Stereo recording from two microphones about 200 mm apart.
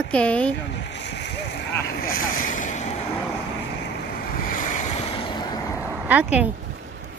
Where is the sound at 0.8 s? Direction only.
60° left (ahead or behind); by 3.0 s 35° left (ahead or behind).